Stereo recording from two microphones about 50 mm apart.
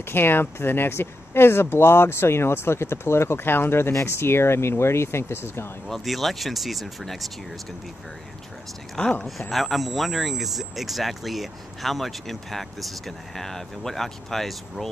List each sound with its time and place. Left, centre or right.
0.0 s speech: left
3.9 s speech: left
5.9 s speech: centre
9.0 s speech: centre
9.5 s speech: centre